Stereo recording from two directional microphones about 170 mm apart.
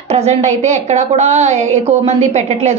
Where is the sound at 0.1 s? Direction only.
40° right (ahead or behind).